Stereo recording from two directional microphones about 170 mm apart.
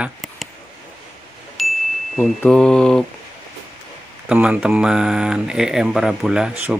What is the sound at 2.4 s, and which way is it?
Speech, 5° left (ahead or behind).